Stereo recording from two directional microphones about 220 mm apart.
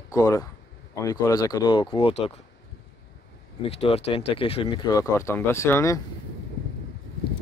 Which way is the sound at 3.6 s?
25° left (ahead or behind).